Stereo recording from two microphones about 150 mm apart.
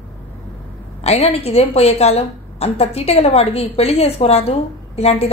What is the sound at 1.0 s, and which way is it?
A woman's voice, 45° left (ahead or behind).